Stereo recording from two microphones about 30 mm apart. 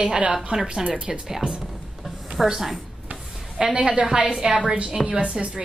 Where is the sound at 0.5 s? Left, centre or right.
Centre.